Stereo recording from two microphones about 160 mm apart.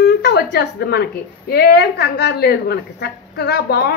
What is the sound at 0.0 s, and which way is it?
A woman's voice, 75° left (ahead or behind).